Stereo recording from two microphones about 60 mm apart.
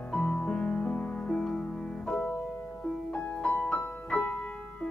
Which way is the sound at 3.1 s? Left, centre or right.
Centre.